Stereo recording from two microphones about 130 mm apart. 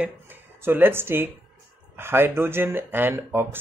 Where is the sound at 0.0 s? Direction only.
15° right (ahead or behind).